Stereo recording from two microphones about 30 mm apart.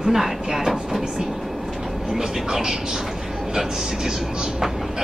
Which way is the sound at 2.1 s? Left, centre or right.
Centre.